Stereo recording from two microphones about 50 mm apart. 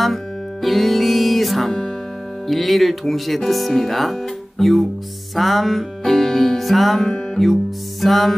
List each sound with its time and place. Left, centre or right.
0.0 s music: centre
2.4 s speech: centre
5.3 s music: centre
8.0 s speech: centre